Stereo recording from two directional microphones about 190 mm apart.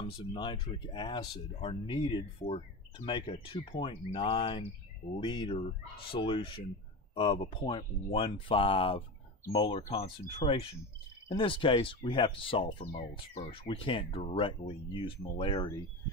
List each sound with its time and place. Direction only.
0.3 s speech: 25° left (ahead or behind)